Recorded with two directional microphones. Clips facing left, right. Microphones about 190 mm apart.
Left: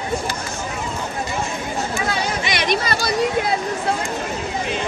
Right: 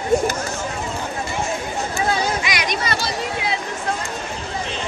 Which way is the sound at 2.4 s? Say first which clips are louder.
Left 3 dB; 30° left (ahead or behind).